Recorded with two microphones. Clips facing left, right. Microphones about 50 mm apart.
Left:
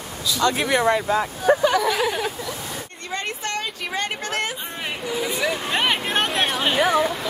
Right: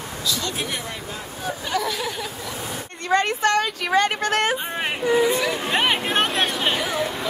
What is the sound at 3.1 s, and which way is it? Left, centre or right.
Speech, right.